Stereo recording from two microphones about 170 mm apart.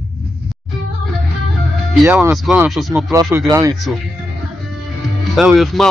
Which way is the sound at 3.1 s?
20° right (ahead or behind).